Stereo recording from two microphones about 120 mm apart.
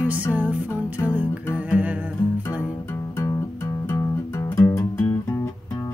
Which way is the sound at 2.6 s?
20° left (ahead or behind).